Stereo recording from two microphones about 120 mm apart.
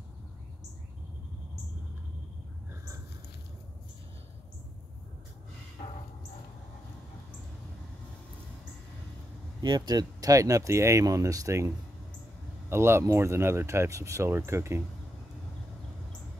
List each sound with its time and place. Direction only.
9.6 s speech: 35° right (ahead or behind)